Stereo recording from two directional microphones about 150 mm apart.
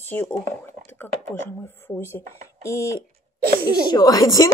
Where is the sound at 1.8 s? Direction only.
15° left (ahead or behind).